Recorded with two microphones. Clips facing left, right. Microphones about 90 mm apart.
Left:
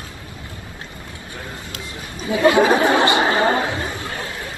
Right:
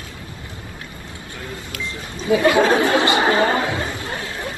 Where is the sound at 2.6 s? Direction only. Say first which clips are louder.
Left 1 dB; 20° left (ahead or behind).